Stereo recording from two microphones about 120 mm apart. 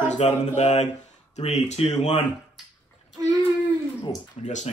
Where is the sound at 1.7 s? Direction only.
60° left (ahead or behind).